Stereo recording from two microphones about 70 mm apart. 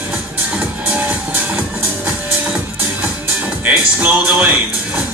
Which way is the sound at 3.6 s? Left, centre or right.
Right.